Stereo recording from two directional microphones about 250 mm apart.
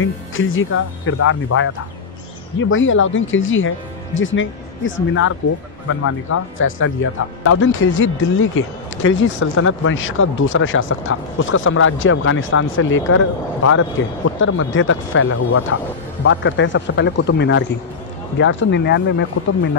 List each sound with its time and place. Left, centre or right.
0.0 s speech: left
2.7 s speech: left